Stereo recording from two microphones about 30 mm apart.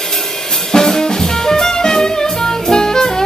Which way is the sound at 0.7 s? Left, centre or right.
Centre.